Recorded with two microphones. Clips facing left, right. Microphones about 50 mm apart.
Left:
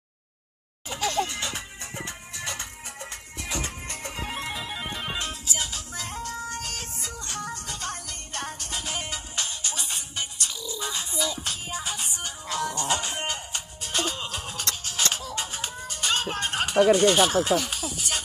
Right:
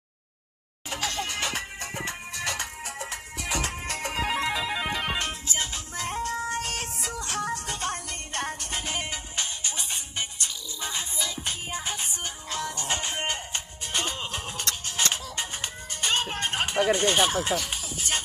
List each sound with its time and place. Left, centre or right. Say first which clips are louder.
0.8 s music: left 4 dB; right
5.1 s music: right 2 dB; right
6.2 s music: right 4 dB; right
7.8 s music: right 3 dB; right
8.8 s music: right 1 dB; centre